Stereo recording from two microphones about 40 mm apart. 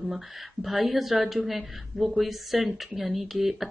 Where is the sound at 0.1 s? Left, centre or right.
Centre.